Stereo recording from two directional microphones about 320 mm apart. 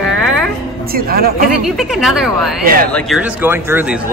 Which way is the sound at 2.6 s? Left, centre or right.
Right.